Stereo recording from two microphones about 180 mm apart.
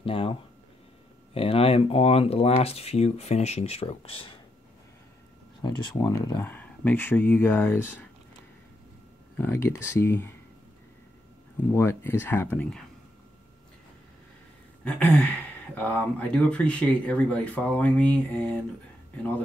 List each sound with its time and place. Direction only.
0.0 s speech: 30° left (ahead or behind)
5.6 s speech: 20° left (ahead or behind)
9.4 s speech: 15° left (ahead or behind)
11.7 s speech: 15° left (ahead or behind)
14.9 s a sound: 5° left (ahead or behind)
15.7 s speech: 10° left (ahead or behind)